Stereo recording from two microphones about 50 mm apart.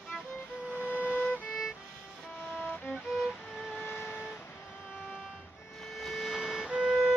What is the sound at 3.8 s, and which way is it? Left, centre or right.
Vehicle, left.